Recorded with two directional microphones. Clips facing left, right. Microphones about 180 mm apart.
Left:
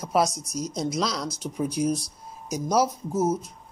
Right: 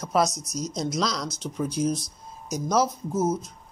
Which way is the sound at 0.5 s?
55° left (ahead or behind).